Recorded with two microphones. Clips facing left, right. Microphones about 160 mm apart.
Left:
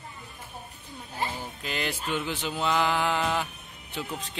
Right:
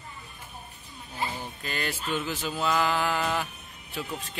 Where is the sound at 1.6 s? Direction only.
15° left (ahead or behind).